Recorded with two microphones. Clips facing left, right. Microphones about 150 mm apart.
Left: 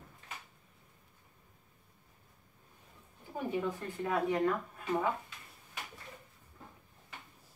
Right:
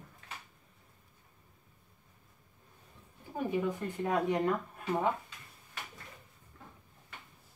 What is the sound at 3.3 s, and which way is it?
Speech, 15° right (ahead or behind).